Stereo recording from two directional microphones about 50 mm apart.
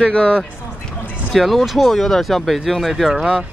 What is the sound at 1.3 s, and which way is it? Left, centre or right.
Speech, centre.